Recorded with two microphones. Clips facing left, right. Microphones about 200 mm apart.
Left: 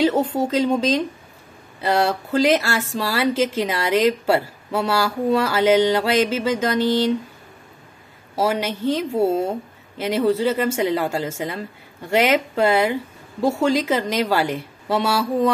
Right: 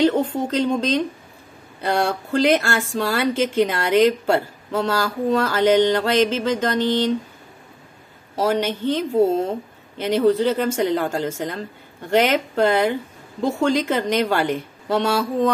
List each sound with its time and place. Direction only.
0.0 s speech: 10° left (ahead or behind)
8.4 s a woman's voice: 5° left (ahead or behind)